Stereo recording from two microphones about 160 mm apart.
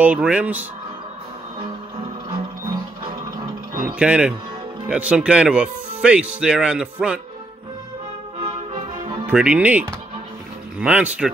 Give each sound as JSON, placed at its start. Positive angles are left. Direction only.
{"t": 0.0, "sound": "speech", "side_deg": -10}
{"t": 3.8, "sound": "speech", "side_deg": -5}
{"t": 8.4, "sound": "music", "side_deg": -35}
{"t": 9.2, "sound": "speech", "side_deg": -5}